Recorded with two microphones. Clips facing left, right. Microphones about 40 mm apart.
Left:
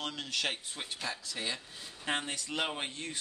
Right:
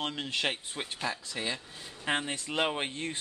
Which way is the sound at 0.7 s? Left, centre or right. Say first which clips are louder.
Right 4 dB; centre.